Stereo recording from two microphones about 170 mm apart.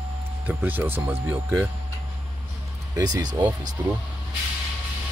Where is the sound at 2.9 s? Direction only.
25° right (ahead or behind).